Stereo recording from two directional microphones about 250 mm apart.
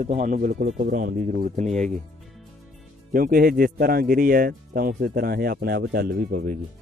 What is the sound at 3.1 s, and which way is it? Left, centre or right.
Speech, right.